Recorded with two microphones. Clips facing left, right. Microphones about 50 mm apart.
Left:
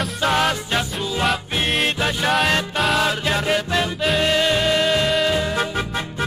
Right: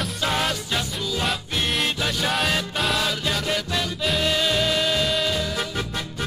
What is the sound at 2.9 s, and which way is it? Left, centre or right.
Music, left.